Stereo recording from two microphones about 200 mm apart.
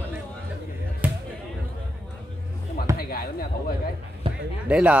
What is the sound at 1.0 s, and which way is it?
Basketball bounce, 5° right (ahead or behind).